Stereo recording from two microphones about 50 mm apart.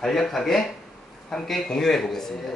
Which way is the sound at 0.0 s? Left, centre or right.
Centre.